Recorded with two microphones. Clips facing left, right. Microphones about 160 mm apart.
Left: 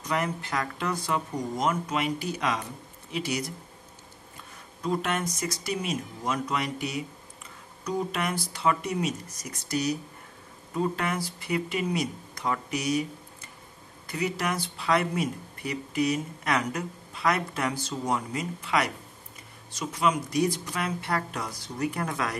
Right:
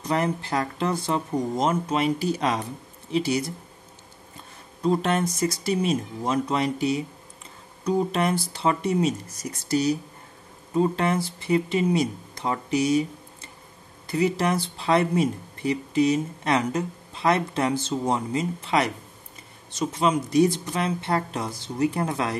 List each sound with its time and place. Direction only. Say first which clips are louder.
0.0 s speech: right 5 dB; 30° right (ahead or behind)
4.8 s speech: right 6 dB; 30° right (ahead or behind)